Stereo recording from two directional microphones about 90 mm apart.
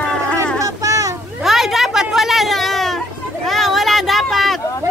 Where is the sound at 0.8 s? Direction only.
40° right (ahead or behind).